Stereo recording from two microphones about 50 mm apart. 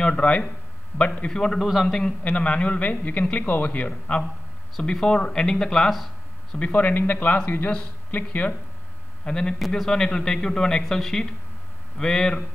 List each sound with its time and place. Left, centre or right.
0.0 s a man's voice: left
1.3 s a man's voice: centre
1.6 s a man's voice: centre
2.0 s a man's voice: left
4.9 s a man's voice: centre
6.6 s speech: left
9.2 s a man's voice: centre